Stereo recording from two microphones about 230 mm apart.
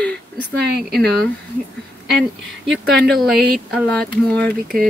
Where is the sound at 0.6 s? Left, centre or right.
Right.